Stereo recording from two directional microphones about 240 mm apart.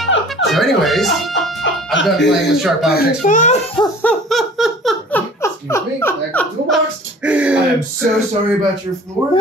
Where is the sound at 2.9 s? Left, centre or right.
Left.